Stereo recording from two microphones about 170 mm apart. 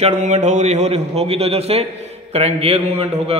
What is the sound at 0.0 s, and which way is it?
A man's voice, 45° right (ahead or behind).